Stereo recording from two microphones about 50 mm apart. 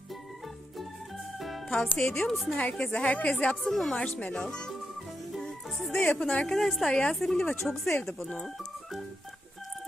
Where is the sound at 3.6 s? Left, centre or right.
Centre.